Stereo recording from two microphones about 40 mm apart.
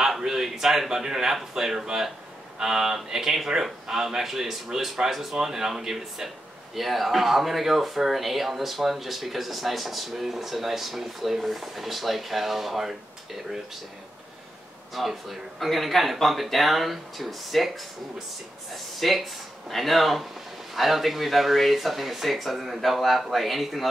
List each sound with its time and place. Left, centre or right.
0.2 s speech: centre
15.0 s speech: centre
18.9 s speech: centre